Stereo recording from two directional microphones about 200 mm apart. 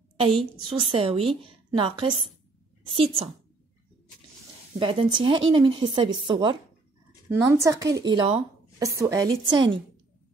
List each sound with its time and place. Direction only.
0.6 s a woman's voice: 25° right (ahead or behind)
4.7 s a woman's voice: 25° right (ahead or behind)